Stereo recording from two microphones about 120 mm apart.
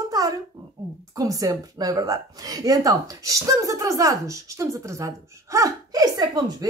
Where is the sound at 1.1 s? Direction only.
30° right (ahead or behind).